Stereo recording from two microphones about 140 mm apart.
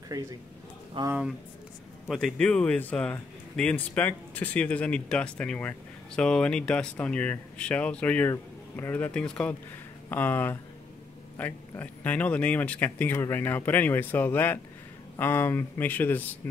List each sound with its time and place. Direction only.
0.1 s a man's voice: 25° right (ahead or behind)
1.0 s a man's voice: 35° right (ahead or behind)
2.0 s speech: 5° left (ahead or behind)